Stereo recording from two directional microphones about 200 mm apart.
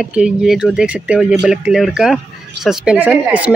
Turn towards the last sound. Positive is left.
turn(degrees=-5)  # may be behind; listen again after turning